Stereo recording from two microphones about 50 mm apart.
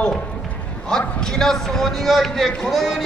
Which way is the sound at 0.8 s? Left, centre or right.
Centre.